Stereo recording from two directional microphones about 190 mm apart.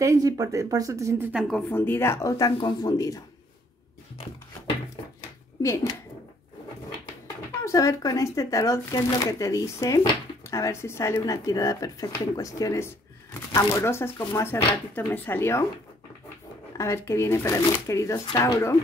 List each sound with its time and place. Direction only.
0.0 s speech: 15° right (ahead or behind)
1.7 s speech: 10° left (ahead or behind)
5.6 s speech: 15° left (ahead or behind)
7.6 s speech: 15° left (ahead or behind)
16.7 s speech: 15° left (ahead or behind)